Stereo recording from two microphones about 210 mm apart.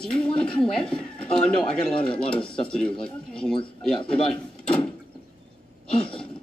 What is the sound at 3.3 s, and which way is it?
Speech, 5° left (ahead or behind).